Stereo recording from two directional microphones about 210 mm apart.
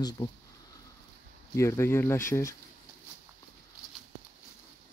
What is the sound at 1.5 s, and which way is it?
Speech, 15° left (ahead or behind).